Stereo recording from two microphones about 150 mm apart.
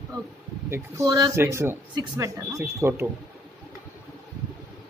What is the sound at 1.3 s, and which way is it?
Speech, 15° right (ahead or behind).